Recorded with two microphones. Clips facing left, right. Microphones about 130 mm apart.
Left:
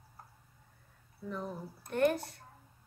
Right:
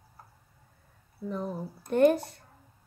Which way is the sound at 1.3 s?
25° right (ahead or behind).